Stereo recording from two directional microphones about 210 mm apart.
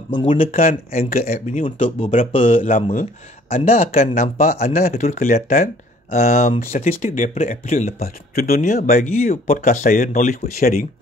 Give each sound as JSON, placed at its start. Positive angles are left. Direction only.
{"t": 0.1, "sound": "speech", "side_deg": 30}